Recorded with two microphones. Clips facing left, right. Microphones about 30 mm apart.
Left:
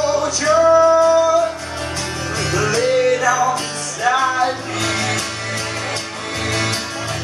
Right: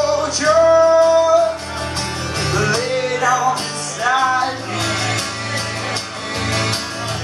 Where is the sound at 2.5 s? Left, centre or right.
Right.